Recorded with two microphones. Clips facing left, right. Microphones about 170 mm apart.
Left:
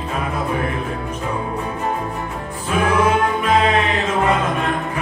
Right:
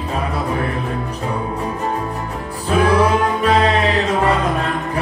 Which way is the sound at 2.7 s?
35° right (ahead or behind).